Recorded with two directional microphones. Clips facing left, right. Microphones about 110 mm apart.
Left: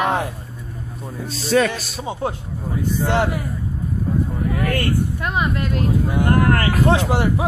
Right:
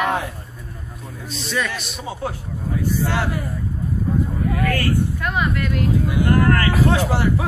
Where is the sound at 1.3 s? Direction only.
35° left (ahead or behind).